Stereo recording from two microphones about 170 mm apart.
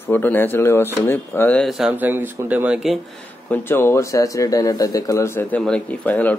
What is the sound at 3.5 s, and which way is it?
A man's voice, 15° left (ahead or behind).